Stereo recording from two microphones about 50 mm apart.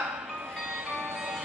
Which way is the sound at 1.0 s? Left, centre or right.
Centre.